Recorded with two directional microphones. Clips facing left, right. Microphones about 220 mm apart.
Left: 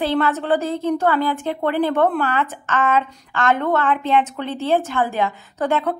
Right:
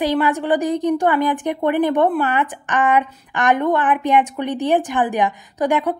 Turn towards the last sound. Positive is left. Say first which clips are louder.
# right 2 dB
turn(degrees=-15)  # may be behind; listen again after turning